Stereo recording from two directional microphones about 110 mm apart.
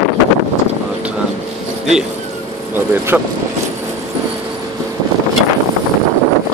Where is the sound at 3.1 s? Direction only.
15° right (ahead or behind).